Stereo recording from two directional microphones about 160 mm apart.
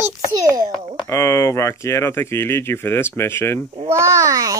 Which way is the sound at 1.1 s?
20° left (ahead or behind).